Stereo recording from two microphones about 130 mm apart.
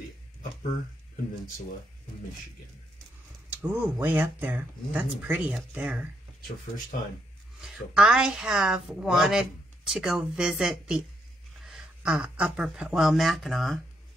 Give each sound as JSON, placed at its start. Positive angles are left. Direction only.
{"t": 3.4, "sound": "speech", "side_deg": -15}
{"t": 6.9, "sound": "speech", "side_deg": 90}
{"t": 7.6, "sound": "a woman's voice", "side_deg": -5}